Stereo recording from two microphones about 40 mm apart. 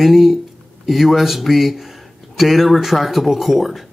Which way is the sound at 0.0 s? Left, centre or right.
Centre.